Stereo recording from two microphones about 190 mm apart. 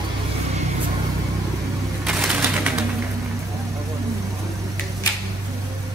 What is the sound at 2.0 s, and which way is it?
Bird, 10° right (ahead or behind).